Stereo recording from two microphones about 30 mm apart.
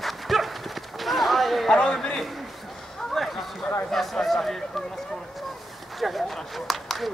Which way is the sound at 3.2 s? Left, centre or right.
Centre.